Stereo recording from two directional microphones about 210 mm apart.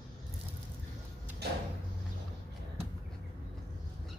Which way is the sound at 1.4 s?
50° right (ahead or behind).